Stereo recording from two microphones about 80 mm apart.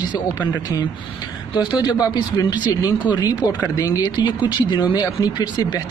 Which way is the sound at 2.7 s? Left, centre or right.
Left.